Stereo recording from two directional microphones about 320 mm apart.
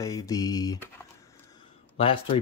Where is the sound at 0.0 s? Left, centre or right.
Centre.